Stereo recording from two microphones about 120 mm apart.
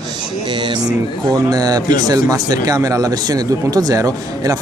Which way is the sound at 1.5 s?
35° right (ahead or behind).